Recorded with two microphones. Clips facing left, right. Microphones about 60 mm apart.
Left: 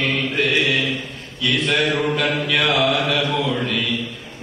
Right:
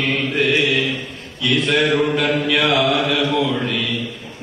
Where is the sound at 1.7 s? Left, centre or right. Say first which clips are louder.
Right 3 dB; centre.